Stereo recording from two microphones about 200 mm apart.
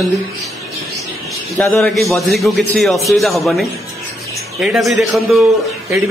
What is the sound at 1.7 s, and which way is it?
A man's voice, centre (ahead or behind).